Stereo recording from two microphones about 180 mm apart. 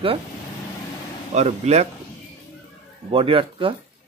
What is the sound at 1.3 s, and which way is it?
Speech, 35° right (ahead or behind).